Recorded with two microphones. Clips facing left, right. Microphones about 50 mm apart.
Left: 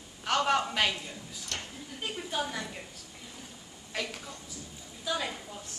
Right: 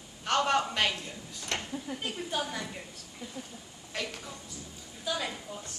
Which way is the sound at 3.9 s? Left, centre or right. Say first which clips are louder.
Left 1 dB; centre.